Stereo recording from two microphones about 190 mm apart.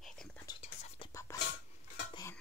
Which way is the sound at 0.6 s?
35° left (ahead or behind).